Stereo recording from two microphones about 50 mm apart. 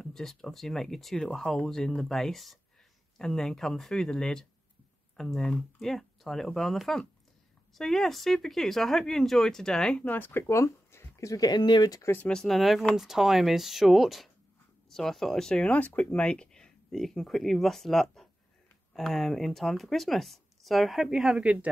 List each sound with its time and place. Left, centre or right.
0.0 s speech: centre
3.2 s speech: centre
10.0 s speech: left
10.5 s a sound: left
12.3 s speech: centre
16.9 s speech: centre
21.2 s speech: right